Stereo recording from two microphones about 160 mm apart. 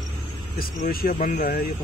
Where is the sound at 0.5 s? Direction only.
70° left (ahead or behind).